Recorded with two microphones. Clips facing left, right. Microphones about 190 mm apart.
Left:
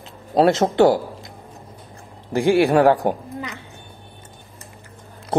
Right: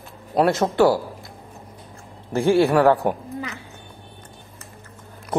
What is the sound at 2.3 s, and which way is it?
A woman's voice, 15° left (ahead or behind).